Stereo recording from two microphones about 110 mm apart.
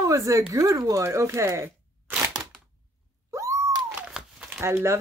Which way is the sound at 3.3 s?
25° right (ahead or behind).